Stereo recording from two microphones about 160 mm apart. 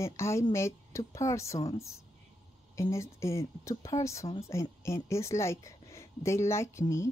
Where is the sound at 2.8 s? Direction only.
20° left (ahead or behind).